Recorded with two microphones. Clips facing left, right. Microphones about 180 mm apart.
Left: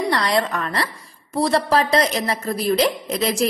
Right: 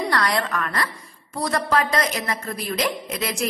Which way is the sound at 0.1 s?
25° left (ahead or behind).